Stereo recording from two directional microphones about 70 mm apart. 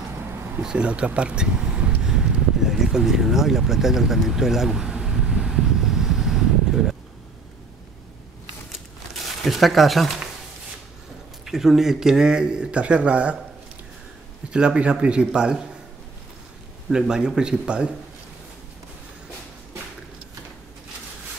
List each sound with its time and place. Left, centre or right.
0.2 s a sound: right
0.6 s a sound: centre
8.7 s crumpling: centre
11.4 s speech: centre
14.5 s speech: centre
17.1 s speech: centre